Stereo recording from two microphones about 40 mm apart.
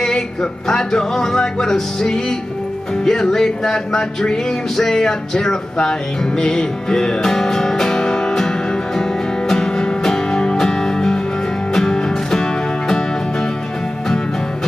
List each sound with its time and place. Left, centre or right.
0.0 s music: centre